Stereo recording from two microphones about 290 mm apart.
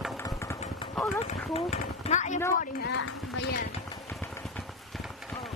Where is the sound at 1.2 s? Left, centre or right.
Left.